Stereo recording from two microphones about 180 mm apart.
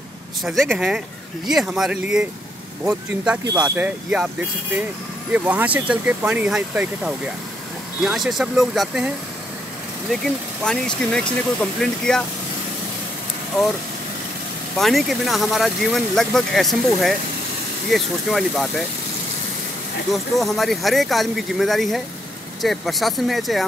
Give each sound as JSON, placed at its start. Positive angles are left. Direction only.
{"t": 0.4, "sound": "speech", "side_deg": 0}
{"t": 5.3, "sound": "speech", "side_deg": -10}
{"t": 14.8, "sound": "speech", "side_deg": 0}
{"t": 20.1, "sound": "speech", "side_deg": 0}